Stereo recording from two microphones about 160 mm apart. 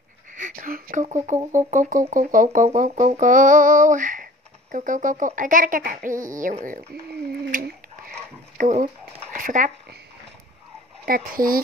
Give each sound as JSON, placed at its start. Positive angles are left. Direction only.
{"t": 0.3, "sound": "a sound", "side_deg": -55}
{"t": 1.0, "sound": "speech", "side_deg": -50}
{"t": 1.7, "sound": "music", "side_deg": -55}
{"t": 8.5, "sound": "speech", "side_deg": -50}
{"t": 11.1, "sound": "music", "side_deg": -60}